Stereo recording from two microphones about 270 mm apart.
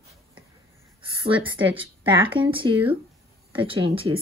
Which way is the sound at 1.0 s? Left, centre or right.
Centre.